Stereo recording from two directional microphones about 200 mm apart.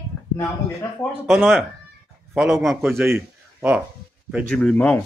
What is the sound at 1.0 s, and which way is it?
A man's voice, centre (ahead or behind).